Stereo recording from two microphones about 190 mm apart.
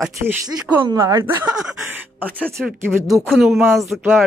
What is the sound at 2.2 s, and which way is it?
Speech, 5° left (ahead or behind).